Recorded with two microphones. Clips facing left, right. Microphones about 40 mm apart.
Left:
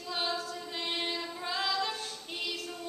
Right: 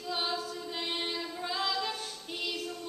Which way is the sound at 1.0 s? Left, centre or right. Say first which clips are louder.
Even; centre.